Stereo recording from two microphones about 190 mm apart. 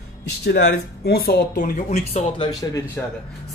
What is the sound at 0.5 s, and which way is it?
Speech, 60° left (ahead or behind).